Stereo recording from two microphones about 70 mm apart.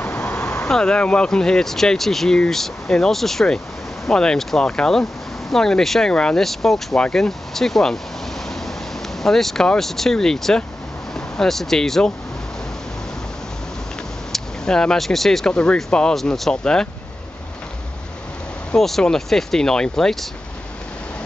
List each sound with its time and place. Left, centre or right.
0.0 s vehicle: left
0.7 s speech: centre
9.2 s speech: centre
14.3 s speech: centre
18.7 s speech: centre